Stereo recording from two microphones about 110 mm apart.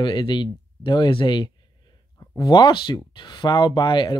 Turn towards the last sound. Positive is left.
turn(degrees=45)  # may be behind; listen again after turning